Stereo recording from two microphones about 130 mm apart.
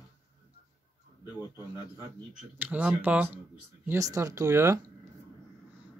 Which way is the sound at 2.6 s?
10° right (ahead or behind).